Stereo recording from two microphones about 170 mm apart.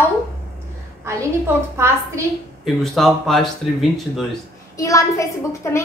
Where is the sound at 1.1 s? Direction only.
15° right (ahead or behind).